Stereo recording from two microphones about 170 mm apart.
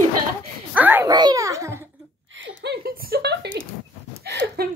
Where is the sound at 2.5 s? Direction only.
70° right (ahead or behind).